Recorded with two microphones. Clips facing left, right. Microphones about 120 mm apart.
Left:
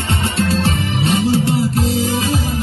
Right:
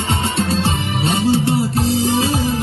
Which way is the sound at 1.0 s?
25° right (ahead or behind).